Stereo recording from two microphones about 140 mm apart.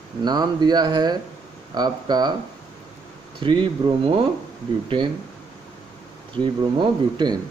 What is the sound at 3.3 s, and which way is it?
Speech, 35° right (ahead or behind).